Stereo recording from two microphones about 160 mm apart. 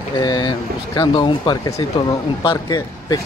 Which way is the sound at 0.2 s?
25° left (ahead or behind).